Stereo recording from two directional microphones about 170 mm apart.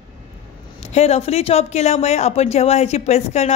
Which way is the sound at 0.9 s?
40° left (ahead or behind).